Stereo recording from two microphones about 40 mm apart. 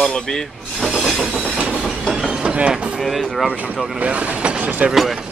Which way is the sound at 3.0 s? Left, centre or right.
Centre.